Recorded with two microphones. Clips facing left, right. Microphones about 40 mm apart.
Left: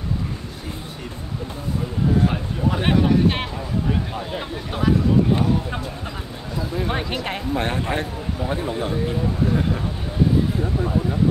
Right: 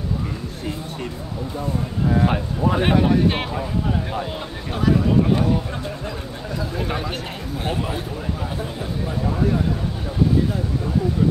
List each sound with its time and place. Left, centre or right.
2.1 s speech: right
2.8 s speech: centre
4.7 s speech: centre
6.9 s speech: left
8.5 s speech: left